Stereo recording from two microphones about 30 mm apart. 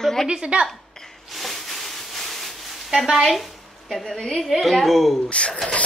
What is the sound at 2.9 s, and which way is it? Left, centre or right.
Speech, centre.